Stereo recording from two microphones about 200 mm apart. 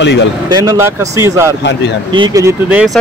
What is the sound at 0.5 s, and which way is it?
Speech, 15° right (ahead or behind).